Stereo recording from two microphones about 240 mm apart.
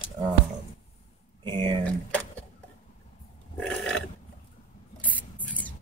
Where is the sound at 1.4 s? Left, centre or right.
Centre.